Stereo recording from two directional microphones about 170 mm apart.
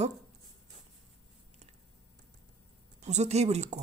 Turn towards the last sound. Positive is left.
turn(degrees=-40)  # may be behind; listen again after turning